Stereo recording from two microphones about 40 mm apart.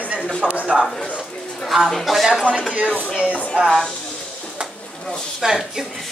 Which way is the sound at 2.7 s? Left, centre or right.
Right.